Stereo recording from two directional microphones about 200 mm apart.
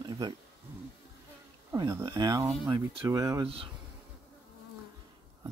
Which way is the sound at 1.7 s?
15° right (ahead or behind).